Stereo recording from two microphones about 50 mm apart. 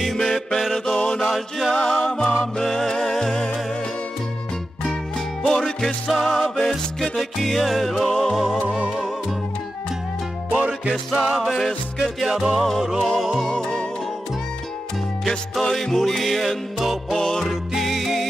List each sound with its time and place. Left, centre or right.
0.0 s music: centre
0.8 s mantra: centre
1.2 s music: centre
1.8 s music: centre
5.4 s music: centre
8.6 s music: right
10.7 s music: centre
12.0 s music: centre
13.4 s music: centre
15.7 s music: centre